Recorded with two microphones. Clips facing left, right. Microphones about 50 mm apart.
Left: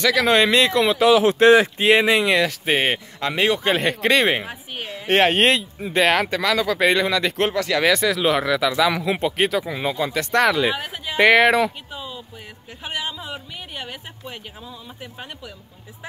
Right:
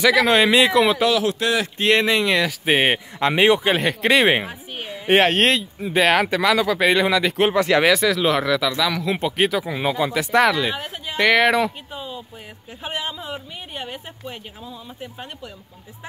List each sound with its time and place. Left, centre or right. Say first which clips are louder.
0.0 s speech: right 1 dB; centre
1.1 s speech: left 7 dB; left
1.8 s speech: left 2 dB; centre
3.2 s speech: right 5 dB; right
3.6 s speech: even; centre
7.5 s speech: right 4 dB; right
7.8 s speech: right 1 dB; centre